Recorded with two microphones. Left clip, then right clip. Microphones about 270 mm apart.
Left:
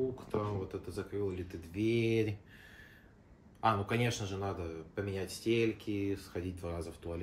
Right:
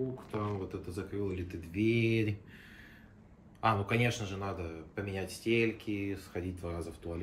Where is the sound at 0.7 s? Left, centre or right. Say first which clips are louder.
Even; right.